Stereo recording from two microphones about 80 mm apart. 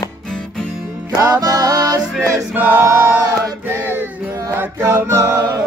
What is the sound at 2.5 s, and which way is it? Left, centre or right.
Choir, right.